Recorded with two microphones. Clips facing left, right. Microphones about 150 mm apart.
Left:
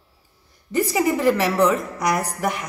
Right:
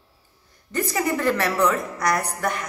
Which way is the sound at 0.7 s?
15° left (ahead or behind).